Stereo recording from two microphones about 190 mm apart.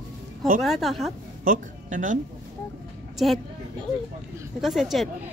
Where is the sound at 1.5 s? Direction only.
45° right (ahead or behind).